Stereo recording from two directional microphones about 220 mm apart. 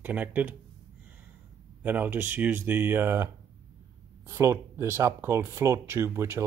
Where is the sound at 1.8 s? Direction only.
10° right (ahead or behind).